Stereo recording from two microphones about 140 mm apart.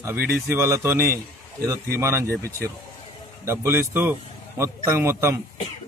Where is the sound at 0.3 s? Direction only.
20° right (ahead or behind).